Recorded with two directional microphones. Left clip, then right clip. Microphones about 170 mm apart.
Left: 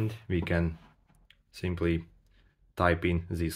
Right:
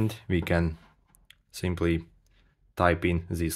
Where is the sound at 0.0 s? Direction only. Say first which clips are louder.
Right 4 dB; 40° right (ahead or behind).